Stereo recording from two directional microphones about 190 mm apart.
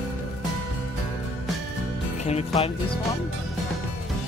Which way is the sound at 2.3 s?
35° left (ahead or behind).